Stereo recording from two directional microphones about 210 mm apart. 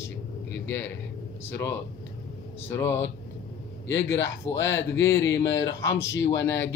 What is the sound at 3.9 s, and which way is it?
Speech, 60° left (ahead or behind).